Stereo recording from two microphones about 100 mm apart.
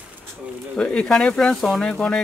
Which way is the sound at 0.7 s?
10° left (ahead or behind).